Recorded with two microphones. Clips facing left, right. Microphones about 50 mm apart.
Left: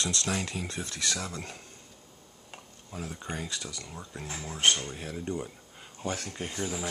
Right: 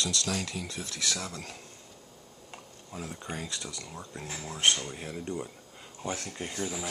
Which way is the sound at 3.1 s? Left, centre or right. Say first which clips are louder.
Left 1 dB; centre.